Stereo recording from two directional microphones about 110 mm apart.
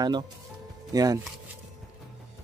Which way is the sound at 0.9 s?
35° right (ahead or behind).